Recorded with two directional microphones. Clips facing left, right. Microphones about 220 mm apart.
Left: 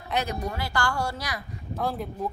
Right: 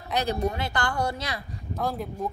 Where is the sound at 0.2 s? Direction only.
30° right (ahead or behind).